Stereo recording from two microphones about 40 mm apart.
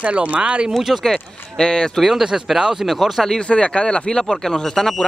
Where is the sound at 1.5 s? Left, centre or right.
Left.